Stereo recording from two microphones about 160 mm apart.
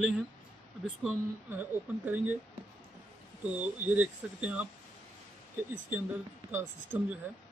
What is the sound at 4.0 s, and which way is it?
Speech, 10° right (ahead or behind).